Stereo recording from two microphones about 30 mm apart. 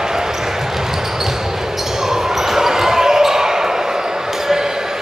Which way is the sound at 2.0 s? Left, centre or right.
Centre.